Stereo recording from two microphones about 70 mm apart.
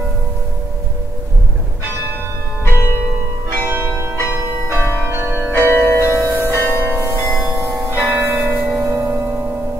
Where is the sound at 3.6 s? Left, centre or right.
Right.